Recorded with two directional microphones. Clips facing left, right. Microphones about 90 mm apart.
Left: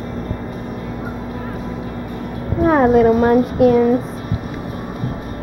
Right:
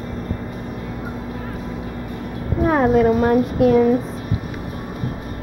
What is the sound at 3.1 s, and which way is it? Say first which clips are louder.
Speech: left 3 dB; 35° left (ahead or behind).